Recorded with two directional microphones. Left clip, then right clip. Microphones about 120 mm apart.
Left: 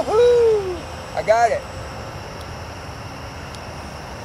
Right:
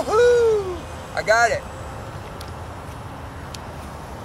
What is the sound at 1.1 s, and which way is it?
Speech, 10° right (ahead or behind).